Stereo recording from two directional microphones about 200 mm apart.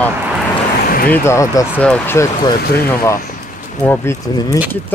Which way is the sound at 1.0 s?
10° left (ahead or behind).